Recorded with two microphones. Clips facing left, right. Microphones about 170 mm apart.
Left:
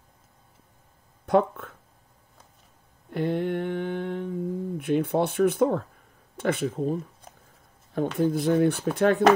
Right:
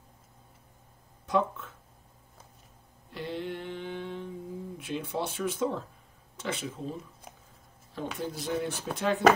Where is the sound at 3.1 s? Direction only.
55° left (ahead or behind).